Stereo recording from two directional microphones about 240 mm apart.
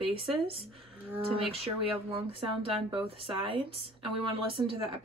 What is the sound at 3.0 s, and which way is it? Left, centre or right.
Speech, right.